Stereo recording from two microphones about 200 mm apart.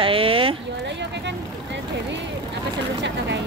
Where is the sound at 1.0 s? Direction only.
60° right (ahead or behind).